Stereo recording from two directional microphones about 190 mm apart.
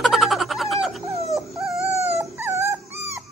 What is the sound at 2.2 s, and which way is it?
Dog, 10° right (ahead or behind).